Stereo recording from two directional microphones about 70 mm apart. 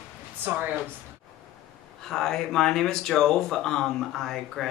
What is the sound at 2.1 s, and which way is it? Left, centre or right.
Speech, centre.